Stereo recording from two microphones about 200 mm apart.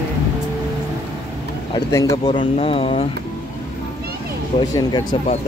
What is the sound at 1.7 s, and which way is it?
Speech, 15° left (ahead or behind).